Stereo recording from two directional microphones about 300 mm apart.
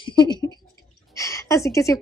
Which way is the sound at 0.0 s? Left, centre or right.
Centre.